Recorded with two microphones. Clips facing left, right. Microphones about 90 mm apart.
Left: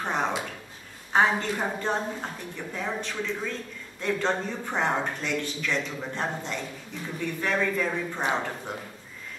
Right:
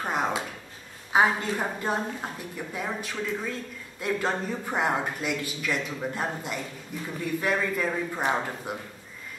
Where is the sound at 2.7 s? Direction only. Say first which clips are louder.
Left 1 dB; 10° right (ahead or behind).